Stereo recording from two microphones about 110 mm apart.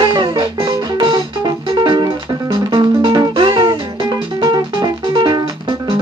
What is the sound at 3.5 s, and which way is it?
Music, 30° right (ahead or behind).